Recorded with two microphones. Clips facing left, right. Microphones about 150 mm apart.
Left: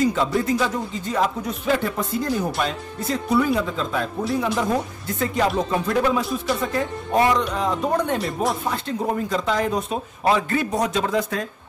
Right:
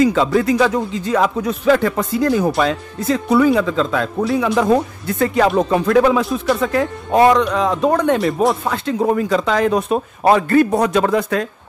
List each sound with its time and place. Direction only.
0.0 s speech: 90° right; by 11.4 s 70° right (ahead or behind)